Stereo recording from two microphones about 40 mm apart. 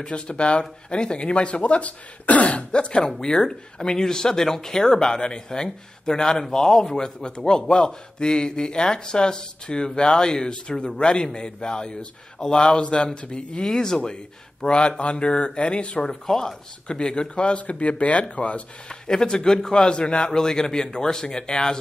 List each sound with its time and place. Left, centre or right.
0.0 s a man's voice: left
16.1 s speech: centre
16.8 s a man's voice: left
18.9 s a man's voice: centre